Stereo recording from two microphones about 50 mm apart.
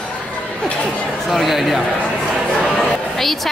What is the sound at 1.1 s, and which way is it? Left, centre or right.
Speech, centre.